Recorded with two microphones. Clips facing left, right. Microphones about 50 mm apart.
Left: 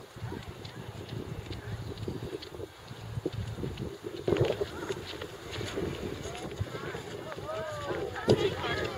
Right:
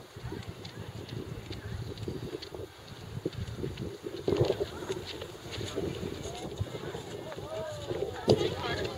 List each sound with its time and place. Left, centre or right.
4.3 s horse: left
4.6 s clip-clop: centre
6.2 s run: left
7.2 s run: centre
7.5 s run: left
8.5 s run: left